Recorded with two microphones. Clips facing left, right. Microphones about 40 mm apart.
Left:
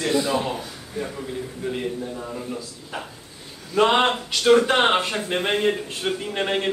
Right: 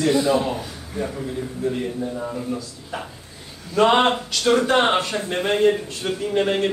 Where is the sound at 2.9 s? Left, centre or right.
Centre.